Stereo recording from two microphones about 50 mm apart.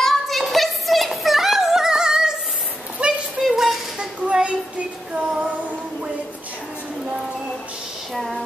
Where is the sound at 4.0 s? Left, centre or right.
Centre.